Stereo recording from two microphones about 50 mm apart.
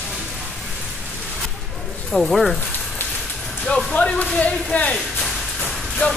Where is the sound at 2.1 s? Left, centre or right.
Centre.